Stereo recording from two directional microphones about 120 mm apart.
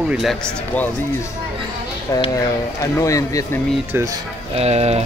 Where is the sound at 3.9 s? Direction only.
30° right (ahead or behind).